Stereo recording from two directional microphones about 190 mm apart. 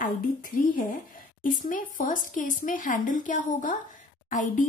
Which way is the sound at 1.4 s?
45° left (ahead or behind).